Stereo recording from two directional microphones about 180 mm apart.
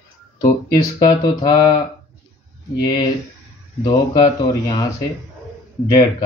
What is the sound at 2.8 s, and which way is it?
Speech, 20° left (ahead or behind).